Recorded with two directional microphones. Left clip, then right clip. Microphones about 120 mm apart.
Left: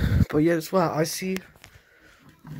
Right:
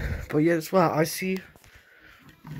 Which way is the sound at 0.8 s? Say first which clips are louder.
Right 1 dB; 10° right (ahead or behind).